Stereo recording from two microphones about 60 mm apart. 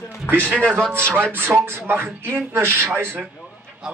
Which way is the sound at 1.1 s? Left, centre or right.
Right.